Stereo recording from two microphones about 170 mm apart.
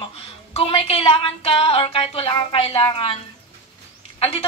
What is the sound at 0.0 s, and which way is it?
A woman's voice, 35° left (ahead or behind).